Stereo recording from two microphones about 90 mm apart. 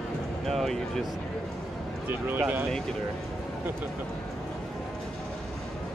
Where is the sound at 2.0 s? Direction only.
20° right (ahead or behind).